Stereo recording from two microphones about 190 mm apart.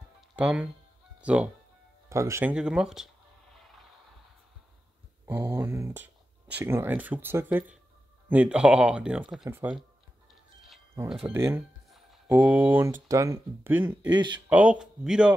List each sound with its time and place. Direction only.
0.4 s speech: 5° right (ahead or behind)
5.2 s speech: 10° right (ahead or behind)
11.3 s speech: 15° right (ahead or behind)
14.0 s speech: 20° right (ahead or behind)
14.5 s speech: 5° right (ahead or behind)